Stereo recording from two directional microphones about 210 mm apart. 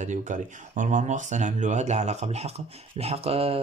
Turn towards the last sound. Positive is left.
turn(degrees=-30)  # may be behind; listen again after turning